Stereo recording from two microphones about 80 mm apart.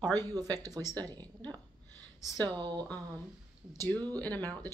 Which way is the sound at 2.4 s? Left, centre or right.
Right.